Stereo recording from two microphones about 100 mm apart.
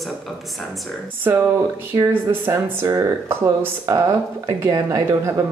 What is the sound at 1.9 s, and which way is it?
A woman's voice, 20° right (ahead or behind).